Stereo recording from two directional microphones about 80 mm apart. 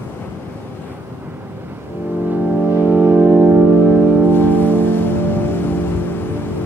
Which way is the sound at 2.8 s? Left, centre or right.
Right.